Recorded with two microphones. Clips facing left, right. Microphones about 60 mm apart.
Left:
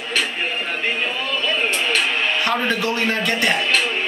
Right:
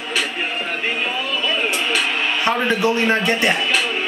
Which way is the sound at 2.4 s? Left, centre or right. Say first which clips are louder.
Right 3 dB; right.